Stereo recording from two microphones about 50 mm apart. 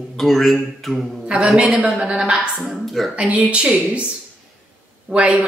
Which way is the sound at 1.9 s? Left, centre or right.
Centre.